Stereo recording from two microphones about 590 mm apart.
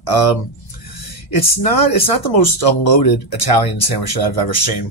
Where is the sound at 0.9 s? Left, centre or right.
Left.